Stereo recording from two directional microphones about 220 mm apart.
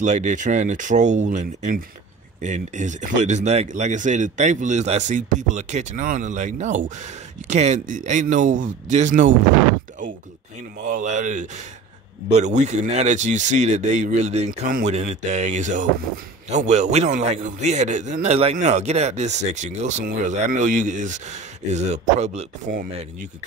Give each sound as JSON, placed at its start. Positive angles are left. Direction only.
{"t": 0.0, "sound": "a man's voice", "side_deg": -35}
{"t": 10.8, "sound": "a man's voice", "side_deg": -35}